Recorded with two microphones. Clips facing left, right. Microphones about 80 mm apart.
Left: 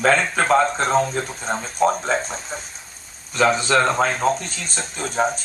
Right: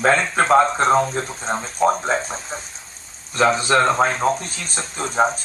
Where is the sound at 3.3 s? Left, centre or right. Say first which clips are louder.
Right 1 dB; right.